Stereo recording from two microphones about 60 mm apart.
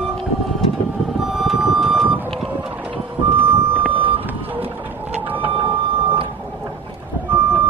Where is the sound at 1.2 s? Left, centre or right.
Centre.